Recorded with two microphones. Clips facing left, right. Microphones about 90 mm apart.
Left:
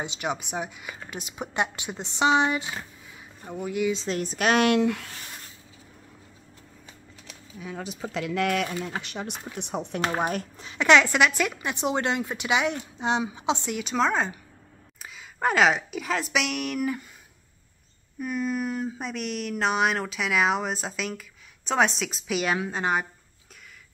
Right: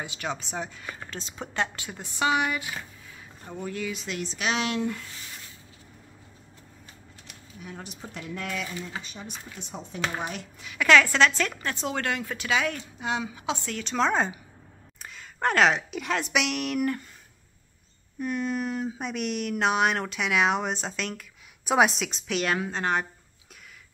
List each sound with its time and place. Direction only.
0.0 s speech: 20° left (ahead or behind)
3.4 s speech: 10° left (ahead or behind)
3.9 s speech: 30° left (ahead or behind)
4.2 s speech: 50° left (ahead or behind); by 5.1 s 75° left (ahead or behind)
8.1 s speech: 85° left; by 10.0 s 65° left (ahead or behind)
10.0 s speech: 50° left (ahead or behind)
10.6 s a woman's voice: 30° left (ahead or behind); by 17.0 s centre (ahead or behind)
18.2 s speech: centre (ahead or behind)